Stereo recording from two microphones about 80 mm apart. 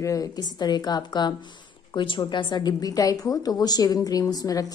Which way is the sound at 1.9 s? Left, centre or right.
Left.